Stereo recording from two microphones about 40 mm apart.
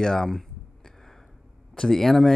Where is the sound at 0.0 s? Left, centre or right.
Centre.